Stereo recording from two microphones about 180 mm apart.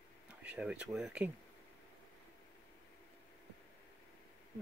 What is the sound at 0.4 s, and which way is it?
Speech, 5° right (ahead or behind).